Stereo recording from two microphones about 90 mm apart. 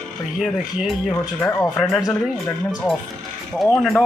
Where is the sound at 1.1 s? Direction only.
30° left (ahead or behind).